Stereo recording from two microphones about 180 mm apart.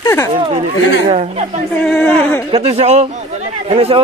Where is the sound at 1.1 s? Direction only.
35° right (ahead or behind).